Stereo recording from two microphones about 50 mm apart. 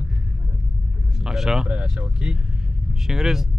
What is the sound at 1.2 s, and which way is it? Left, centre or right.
Speech, centre.